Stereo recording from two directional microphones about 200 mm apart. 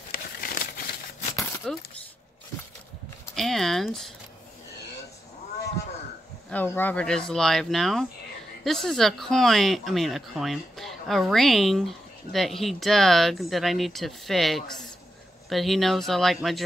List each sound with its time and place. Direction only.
0.1 s crumpling: 50° left (ahead or behind)
1.6 s speech: 5° left (ahead or behind)
3.3 s speech: centre (ahead or behind)
6.5 s speech: 10° left (ahead or behind)